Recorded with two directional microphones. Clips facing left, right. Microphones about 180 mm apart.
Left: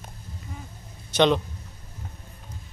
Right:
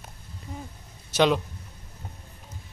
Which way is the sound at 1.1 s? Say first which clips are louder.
Left 1 dB; 5° right (ahead or behind).